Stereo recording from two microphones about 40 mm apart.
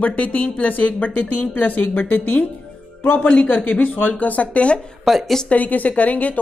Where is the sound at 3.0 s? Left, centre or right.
Left.